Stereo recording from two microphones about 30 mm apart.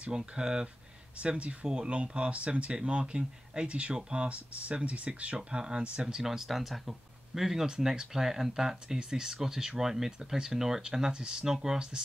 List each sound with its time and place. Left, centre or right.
0.4 s speech: right
1.2 s speech: right
4.3 s speech: right
5.5 s speech: right
6.2 s speech: centre
6.9 s a sound: centre
8.1 s speech: centre
10.8 s speech: right